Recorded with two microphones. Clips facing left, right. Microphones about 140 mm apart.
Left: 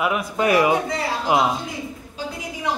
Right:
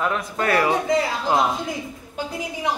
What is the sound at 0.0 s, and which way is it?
Speech, 10° left (ahead or behind).